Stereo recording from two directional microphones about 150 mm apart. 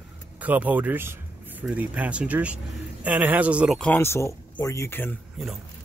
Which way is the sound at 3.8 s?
15° left (ahead or behind).